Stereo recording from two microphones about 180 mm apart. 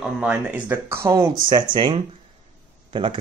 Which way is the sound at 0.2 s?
5° right (ahead or behind).